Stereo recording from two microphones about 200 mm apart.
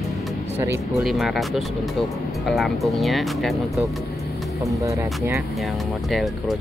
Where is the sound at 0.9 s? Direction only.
Centre (ahead or behind).